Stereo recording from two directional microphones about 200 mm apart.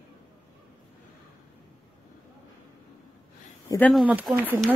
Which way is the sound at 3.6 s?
10° left (ahead or behind).